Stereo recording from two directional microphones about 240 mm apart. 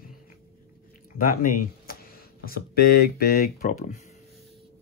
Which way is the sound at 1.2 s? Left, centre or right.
Left.